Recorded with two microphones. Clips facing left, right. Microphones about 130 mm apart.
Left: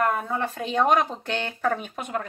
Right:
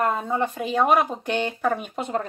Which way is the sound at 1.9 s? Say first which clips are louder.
Right 4 dB; 30° right (ahead or behind).